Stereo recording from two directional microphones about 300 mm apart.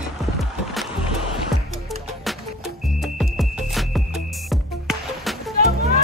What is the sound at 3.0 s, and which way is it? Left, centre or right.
Music, centre.